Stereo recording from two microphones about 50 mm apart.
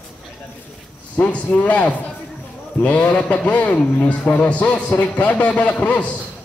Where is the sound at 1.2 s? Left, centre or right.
Left.